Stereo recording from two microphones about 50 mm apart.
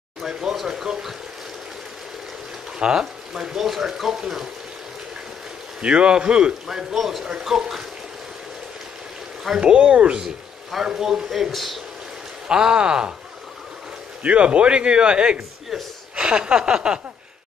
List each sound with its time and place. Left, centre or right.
0.3 s speech: centre
2.8 s speech: centre
5.8 s speech: centre
9.6 s speech: right
10.1 s a man's voice: centre
11.5 s speech: centre
12.4 s speech: centre
14.2 s speech: right
15.7 s speech: centre
16.2 s speech: centre